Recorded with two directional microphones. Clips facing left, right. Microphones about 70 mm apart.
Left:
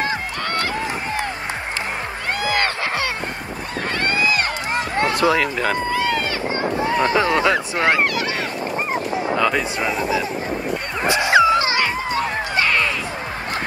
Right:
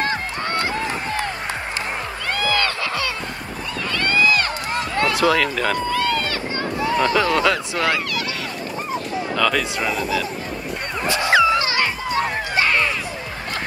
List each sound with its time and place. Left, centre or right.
2.3 s a sound: left
3.9 s run: left
9.3 s speech: left
11.1 s music: left
12.5 s music: centre